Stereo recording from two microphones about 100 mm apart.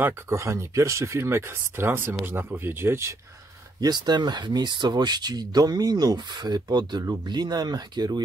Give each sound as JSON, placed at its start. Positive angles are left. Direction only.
{"t": 0.0, "sound": "speech", "side_deg": -30}
{"t": 3.8, "sound": "speech", "side_deg": -45}